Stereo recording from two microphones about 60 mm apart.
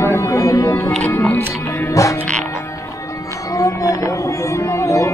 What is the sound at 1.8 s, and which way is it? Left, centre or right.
Music, left.